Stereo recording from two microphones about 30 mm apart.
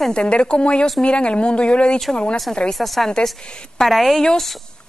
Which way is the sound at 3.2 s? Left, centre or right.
Left.